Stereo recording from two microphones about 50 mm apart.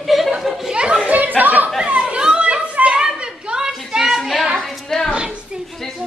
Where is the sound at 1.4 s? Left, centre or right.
Right.